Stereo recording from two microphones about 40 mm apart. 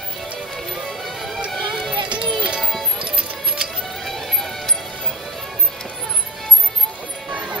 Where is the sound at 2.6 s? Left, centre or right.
Centre.